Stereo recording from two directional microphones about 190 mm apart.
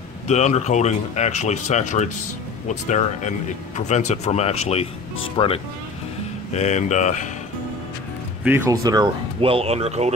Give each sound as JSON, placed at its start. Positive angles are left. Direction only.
{"t": 0.3, "sound": "speech", "side_deg": 35}
{"t": 5.4, "sound": "speech", "side_deg": 20}
{"t": 6.5, "sound": "speech", "side_deg": 35}
{"t": 8.5, "sound": "speech", "side_deg": -15}